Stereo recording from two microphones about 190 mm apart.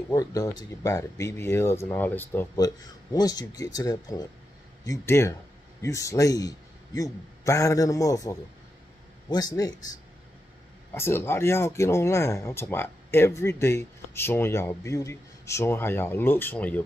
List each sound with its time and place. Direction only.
0.1 s speech: 20° left (ahead or behind)
10.9 s speech: 10° left (ahead or behind)